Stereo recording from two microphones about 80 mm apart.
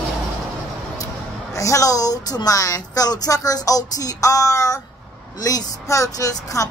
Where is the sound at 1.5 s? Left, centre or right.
Left.